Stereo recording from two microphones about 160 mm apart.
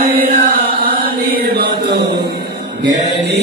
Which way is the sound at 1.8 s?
90° right.